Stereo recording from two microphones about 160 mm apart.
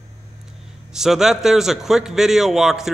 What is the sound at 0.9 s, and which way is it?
A man's voice, 5° right (ahead or behind).